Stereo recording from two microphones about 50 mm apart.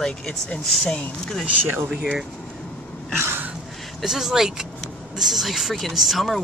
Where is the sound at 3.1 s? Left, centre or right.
Right.